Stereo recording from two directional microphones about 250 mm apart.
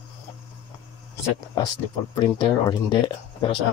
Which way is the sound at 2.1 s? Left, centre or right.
Centre.